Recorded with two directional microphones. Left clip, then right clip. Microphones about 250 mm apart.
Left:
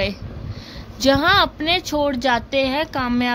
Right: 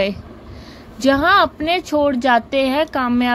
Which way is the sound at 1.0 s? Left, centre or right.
Centre.